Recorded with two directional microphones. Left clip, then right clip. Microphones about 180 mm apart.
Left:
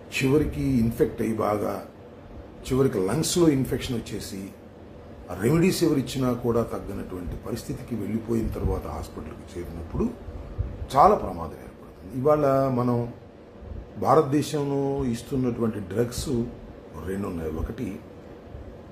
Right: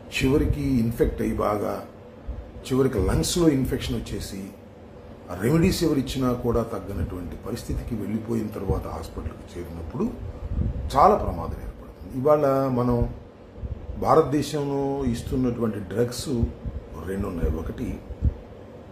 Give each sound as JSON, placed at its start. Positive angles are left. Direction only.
{"t": 0.1, "sound": "a man's voice", "side_deg": 10}